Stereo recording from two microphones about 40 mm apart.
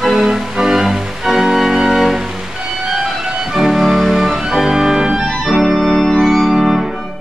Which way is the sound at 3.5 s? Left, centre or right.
Centre.